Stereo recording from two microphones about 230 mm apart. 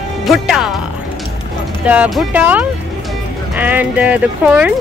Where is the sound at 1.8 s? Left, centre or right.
Centre.